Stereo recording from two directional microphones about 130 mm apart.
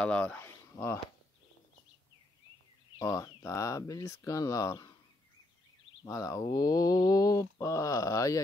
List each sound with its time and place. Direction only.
0.0 s speech: 10° left (ahead or behind)
3.0 s mantra: 25° left (ahead or behind)
6.0 s mantra: 25° left (ahead or behind)